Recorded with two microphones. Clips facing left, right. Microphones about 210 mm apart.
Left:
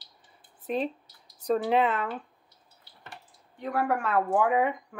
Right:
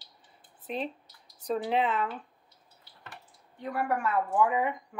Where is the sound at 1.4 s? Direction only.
45° left (ahead or behind).